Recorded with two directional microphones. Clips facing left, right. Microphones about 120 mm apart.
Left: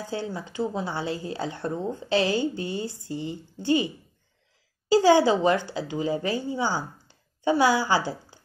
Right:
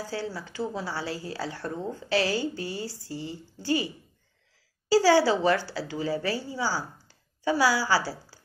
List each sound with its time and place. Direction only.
0.0 s a woman's voice: 20° left (ahead or behind)